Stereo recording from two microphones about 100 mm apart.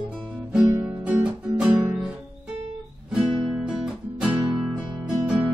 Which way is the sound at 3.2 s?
5° right (ahead or behind).